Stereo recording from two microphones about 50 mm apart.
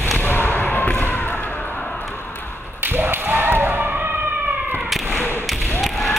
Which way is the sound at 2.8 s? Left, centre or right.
Right.